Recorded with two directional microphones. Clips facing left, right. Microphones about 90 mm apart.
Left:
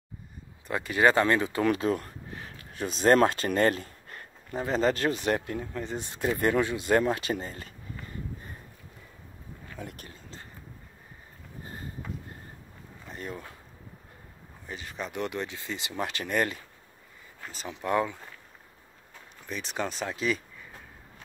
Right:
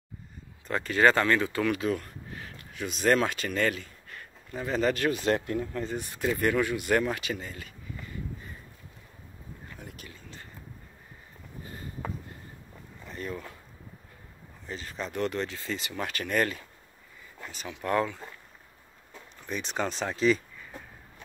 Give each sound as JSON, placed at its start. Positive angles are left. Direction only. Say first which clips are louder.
{"t": 0.7, "sound": "speech", "louder": "even", "side_deg": 15}
{"t": 1.6, "sound": "a sound", "louder": "left 2 dB", "side_deg": 30}
{"t": 3.3, "sound": "speech", "louder": "left 4 dB", "side_deg": 35}
{"t": 5.3, "sound": "speech", "louder": "right 2 dB", "side_deg": 10}
{"t": 5.9, "sound": "speech", "louder": "even", "side_deg": 25}
{"t": 13.1, "sound": "speech", "louder": "right 2 dB", "side_deg": 30}
{"t": 14.7, "sound": "speech", "louder": "right 1 dB", "side_deg": 15}
{"t": 17.5, "sound": "speech", "louder": "left 1 dB", "side_deg": 30}
{"t": 17.8, "sound": "speech", "louder": "even", "side_deg": 15}
{"t": 19.4, "sound": "speech", "louder": "right 2 dB", "side_deg": 0}